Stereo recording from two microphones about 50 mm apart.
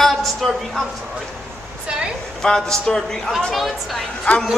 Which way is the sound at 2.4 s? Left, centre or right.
Centre.